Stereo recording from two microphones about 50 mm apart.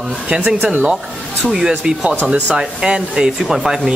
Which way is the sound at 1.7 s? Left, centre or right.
Right.